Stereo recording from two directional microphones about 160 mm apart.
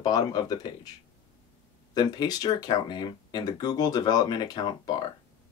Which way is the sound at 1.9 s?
25° left (ahead or behind).